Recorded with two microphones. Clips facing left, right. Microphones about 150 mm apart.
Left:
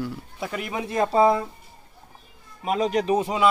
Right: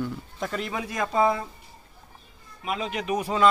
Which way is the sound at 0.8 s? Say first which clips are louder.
Left 5 dB; 30° left (ahead or behind).